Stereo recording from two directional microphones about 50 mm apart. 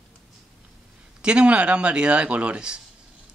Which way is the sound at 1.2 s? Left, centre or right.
Right.